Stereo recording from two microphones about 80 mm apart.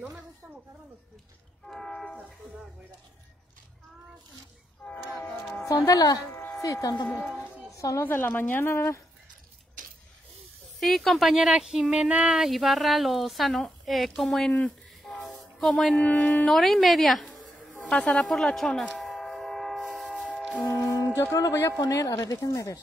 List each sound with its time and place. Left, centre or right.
1.7 s train: centre
4.8 s train: centre
5.8 s speech: left
7.7 s a sound: left
8.0 s speech: left
10.8 s speech: centre
16.0 s a woman's voice: centre
18.9 s train: centre
20.1 s train: centre
20.7 s music: left
21.4 s speech: left